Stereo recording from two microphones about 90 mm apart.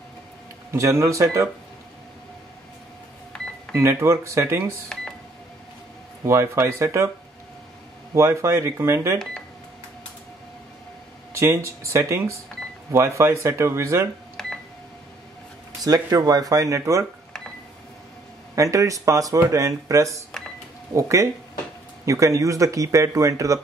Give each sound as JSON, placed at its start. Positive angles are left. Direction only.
{"t": 0.7, "sound": "speech", "side_deg": -35}
{"t": 3.7, "sound": "speech", "side_deg": -30}
{"t": 6.2, "sound": "speech", "side_deg": -30}
{"t": 8.1, "sound": "speech", "side_deg": -30}
{"t": 11.3, "sound": "speech", "side_deg": -30}
{"t": 14.4, "sound": "cash register", "side_deg": 5}
{"t": 15.8, "sound": "speech", "side_deg": -45}
{"t": 18.5, "sound": "speech", "side_deg": -35}